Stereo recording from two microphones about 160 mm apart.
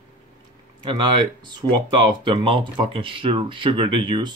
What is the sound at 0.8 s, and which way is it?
Speech, 30° right (ahead or behind).